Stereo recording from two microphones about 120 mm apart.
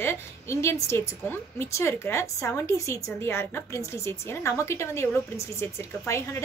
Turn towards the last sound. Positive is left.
turn(degrees=25)  # may be behind; listen again after turning